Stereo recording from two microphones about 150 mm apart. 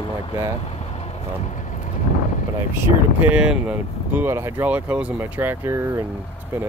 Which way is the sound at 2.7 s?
15° right (ahead or behind).